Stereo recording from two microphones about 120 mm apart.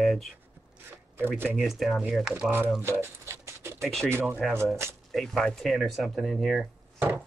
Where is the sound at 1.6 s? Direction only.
Centre (ahead or behind).